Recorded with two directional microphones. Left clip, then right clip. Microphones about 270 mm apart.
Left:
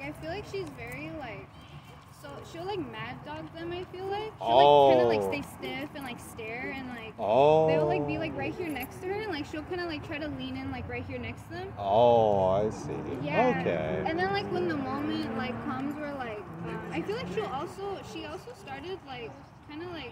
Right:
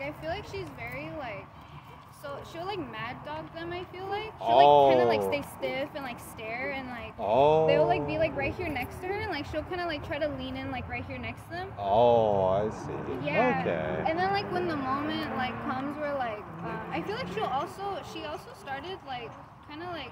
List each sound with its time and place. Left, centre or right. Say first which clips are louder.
0.0 s speech: right 3 dB; right
4.5 s speech: even; centre
5.1 s speech: right 1 dB; right
7.2 s speech: left 1 dB; centre
7.6 s speech: right 2 dB; right
11.8 s speech: even; centre
14.0 s speech: right 2 dB; right